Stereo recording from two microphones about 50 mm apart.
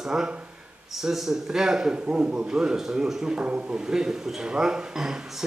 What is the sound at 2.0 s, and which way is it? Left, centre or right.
A man's voice, right.